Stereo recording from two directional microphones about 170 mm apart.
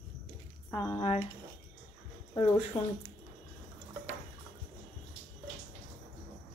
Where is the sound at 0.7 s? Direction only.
15° left (ahead or behind).